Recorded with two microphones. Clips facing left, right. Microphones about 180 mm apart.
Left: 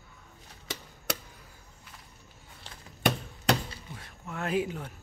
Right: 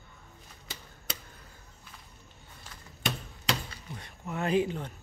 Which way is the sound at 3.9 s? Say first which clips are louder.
Right 3 dB; centre (ahead or behind).